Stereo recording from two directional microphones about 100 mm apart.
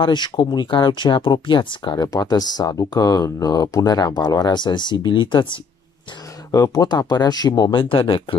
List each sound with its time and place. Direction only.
0.0 s speech: 50° left (ahead or behind)
6.5 s speech: 35° left (ahead or behind)
7.8 s speech: 60° left (ahead or behind)